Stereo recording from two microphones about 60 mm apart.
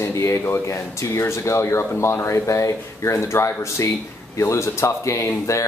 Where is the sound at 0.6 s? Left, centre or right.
Left.